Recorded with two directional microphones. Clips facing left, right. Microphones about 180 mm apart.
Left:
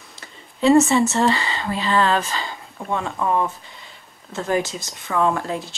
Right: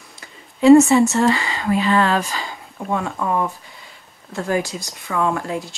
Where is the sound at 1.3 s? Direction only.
30° left (ahead or behind).